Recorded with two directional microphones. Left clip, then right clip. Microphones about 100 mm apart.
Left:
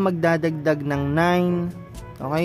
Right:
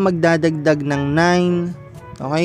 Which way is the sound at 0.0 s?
40° right (ahead or behind).